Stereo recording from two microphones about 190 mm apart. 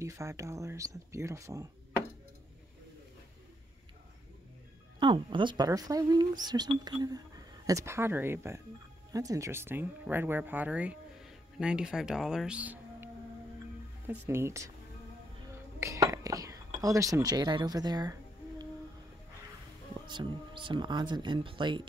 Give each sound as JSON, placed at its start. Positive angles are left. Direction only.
{"t": 0.0, "sound": "speech", "side_deg": -15}
{"t": 5.0, "sound": "speech", "side_deg": -25}
{"t": 20.1, "sound": "speech", "side_deg": -25}